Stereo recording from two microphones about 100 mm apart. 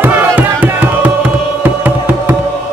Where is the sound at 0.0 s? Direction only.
15° right (ahead or behind).